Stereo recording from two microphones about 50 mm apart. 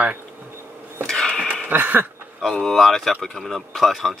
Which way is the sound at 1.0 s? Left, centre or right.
Centre.